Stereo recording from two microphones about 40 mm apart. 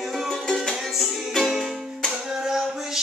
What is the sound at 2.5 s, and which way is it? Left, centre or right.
Music, centre.